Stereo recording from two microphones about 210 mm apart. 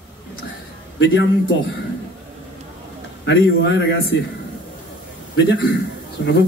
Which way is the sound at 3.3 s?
55° left (ahead or behind).